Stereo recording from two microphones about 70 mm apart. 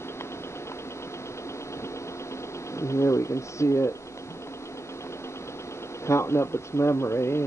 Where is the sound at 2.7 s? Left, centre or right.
Left.